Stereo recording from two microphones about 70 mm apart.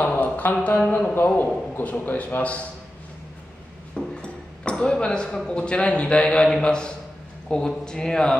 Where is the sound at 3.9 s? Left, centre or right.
Centre.